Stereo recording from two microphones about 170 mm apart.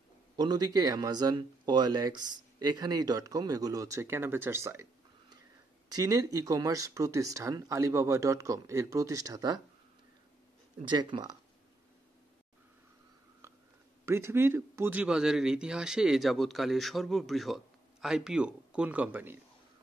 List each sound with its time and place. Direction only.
0.4 s speech: 25° right (ahead or behind)
5.9 s speech: 20° right (ahead or behind)
10.9 s speech: 25° right (ahead or behind)
13.4 s a sound: 15° right (ahead or behind)
14.0 s a man's voice: 15° right (ahead or behind)